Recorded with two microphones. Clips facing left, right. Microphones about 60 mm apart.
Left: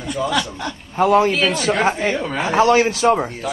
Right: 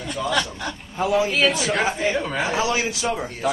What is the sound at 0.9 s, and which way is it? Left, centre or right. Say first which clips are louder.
A man's voice: left 6 dB; left.